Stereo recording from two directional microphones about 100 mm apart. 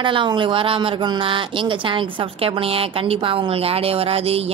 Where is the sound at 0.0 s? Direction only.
55° right (ahead or behind).